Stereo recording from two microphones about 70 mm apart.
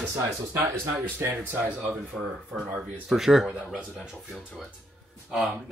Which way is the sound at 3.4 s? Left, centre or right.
Centre.